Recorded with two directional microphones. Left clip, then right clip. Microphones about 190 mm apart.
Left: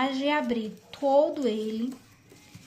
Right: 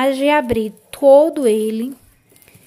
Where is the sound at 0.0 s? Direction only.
55° right (ahead or behind).